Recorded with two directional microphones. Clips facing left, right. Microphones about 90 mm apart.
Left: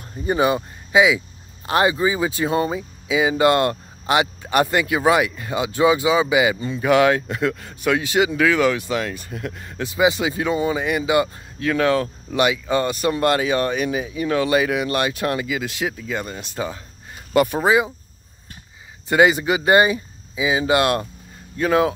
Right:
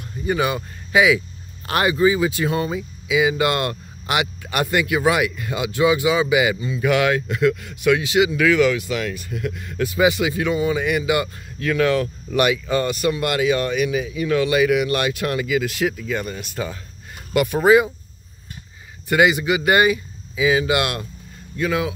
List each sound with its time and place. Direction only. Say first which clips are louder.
0.2 s speech: left 3 dB; 30° left (ahead or behind)
17.6 s speech: right 3 dB; 20° left (ahead or behind)
19.0 s speech: left 1 dB; 30° left (ahead or behind)